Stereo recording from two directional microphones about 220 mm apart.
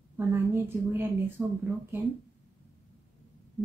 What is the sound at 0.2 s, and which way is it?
Speech, 10° right (ahead or behind).